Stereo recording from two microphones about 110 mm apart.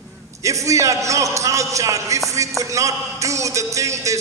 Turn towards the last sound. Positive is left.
turn(degrees=-30)  # may be behind; listen again after turning